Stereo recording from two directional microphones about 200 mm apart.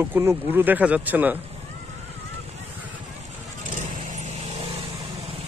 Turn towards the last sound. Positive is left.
turn(degrees=-30)  # may be behind; listen again after turning